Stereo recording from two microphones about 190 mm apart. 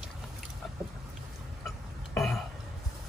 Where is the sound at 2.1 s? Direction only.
5° left (ahead or behind).